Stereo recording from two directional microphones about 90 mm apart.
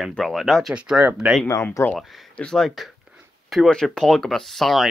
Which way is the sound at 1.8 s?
35° left (ahead or behind).